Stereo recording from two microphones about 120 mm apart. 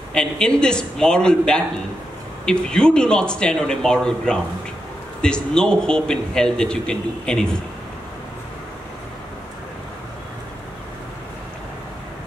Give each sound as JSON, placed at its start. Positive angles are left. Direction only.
{"t": 0.1, "sound": "a man's voice", "side_deg": 5}